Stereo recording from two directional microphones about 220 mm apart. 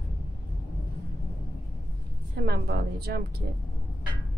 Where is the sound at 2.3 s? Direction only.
45° right (ahead or behind).